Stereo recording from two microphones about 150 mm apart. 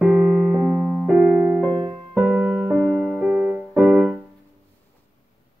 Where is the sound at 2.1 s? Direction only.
10° right (ahead or behind).